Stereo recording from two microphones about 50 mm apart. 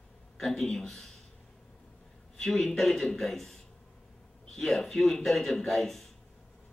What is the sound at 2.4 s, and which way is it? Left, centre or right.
A man's voice, centre.